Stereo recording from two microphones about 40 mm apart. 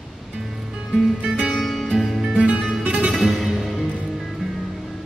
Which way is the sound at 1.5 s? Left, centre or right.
Centre.